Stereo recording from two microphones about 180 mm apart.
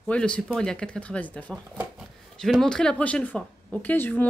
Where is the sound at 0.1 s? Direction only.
5° left (ahead or behind).